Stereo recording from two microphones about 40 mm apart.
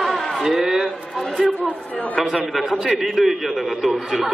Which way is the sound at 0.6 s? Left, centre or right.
Centre.